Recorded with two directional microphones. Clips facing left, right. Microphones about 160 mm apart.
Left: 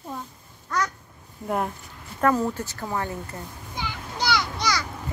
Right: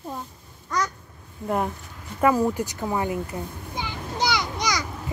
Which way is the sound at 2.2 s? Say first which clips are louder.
Right 2 dB; 10° right (ahead or behind).